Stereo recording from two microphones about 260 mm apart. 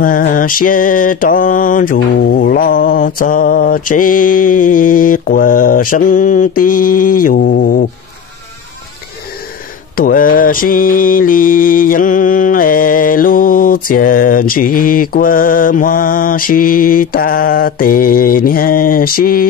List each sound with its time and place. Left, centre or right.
0.0 s mantra: left
9.9 s mantra: left